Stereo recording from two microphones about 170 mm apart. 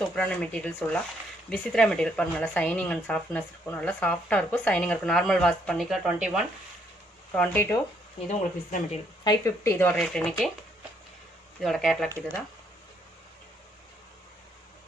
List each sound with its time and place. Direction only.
0.1 s speech: 5° left (ahead or behind)
7.3 s speech: 10° left (ahead or behind)
8.3 s speech: 40° left (ahead or behind)
9.2 s speech: 20° left (ahead or behind)
9.9 s speech: 5° left (ahead or behind)
11.6 s speech: centre (ahead or behind)